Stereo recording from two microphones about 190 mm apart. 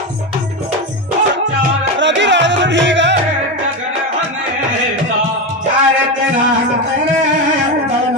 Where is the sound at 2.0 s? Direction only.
65° right (ahead or behind).